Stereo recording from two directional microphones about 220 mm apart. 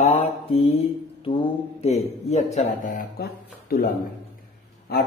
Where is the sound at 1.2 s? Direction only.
25° left (ahead or behind).